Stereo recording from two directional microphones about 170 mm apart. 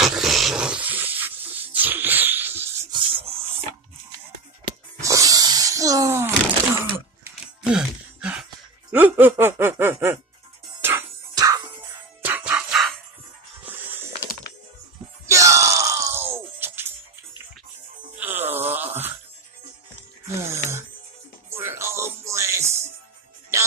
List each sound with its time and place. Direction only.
0.0 s sneeze: centre (ahead or behind)
2.9 s rub: 30° right (ahead or behind)
5.0 s a sound: 20° right (ahead or behind); by 8.5 s 5° right (ahead or behind)
8.9 s snicker: 10° right (ahead or behind)
10.8 s music: 15° right (ahead or behind)
12.2 s music: 10° right (ahead or behind)
13.7 s a sound: 10° right (ahead or behind)
15.2 s groan: 20° right (ahead or behind)
18.1 s wail: 10° right (ahead or behind)
20.3 s a sound: 15° right (ahead or behind)
21.5 s music: 15° right (ahead or behind)